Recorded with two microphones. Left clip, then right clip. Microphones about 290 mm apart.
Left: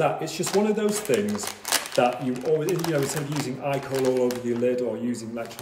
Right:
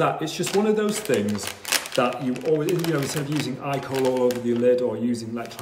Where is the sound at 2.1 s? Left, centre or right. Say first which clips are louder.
Right 1 dB; centre.